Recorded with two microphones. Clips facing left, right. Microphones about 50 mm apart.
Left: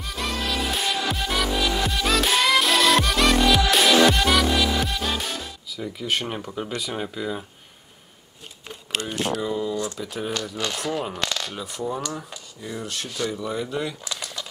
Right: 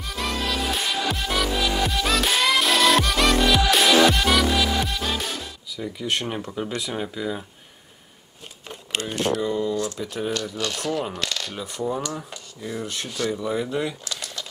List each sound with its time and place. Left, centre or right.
0.0 s music: centre
9.4 s speech: centre
11.1 s coin: centre
11.5 s speech: centre
14.0 s a sound: centre